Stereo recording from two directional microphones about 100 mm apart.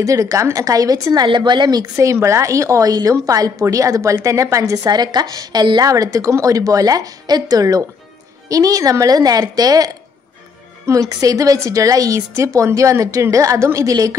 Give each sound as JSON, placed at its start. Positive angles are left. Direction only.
{"t": 0.0, "sound": "a woman's voice", "side_deg": -35}
{"t": 1.2, "sound": "speech", "side_deg": -50}
{"t": 2.0, "sound": "a woman's voice", "side_deg": -30}
{"t": 10.9, "sound": "a woman's voice", "side_deg": -35}